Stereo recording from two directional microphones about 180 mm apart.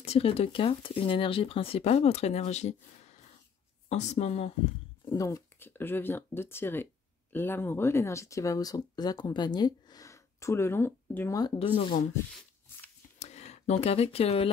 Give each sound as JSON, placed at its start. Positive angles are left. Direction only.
{"t": 0.0, "sound": "speech", "side_deg": 35}
{"t": 5.1, "sound": "speech", "side_deg": 20}
{"t": 11.5, "sound": "speech", "side_deg": 30}
{"t": 13.2, "sound": "speech", "side_deg": 40}